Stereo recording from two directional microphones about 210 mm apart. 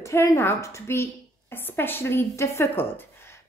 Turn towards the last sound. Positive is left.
turn(degrees=10)  # may be behind; listen again after turning